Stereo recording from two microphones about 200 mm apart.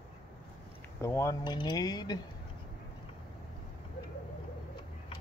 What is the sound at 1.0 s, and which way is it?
Speech, 15° left (ahead or behind).